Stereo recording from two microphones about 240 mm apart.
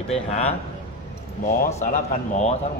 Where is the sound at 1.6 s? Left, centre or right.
Left.